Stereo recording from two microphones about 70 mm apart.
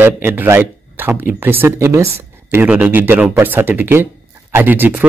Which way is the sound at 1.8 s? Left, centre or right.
Right.